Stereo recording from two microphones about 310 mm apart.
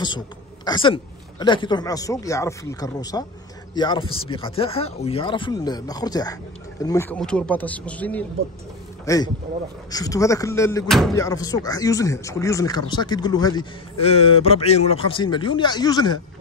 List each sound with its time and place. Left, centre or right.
0.7 s speech: centre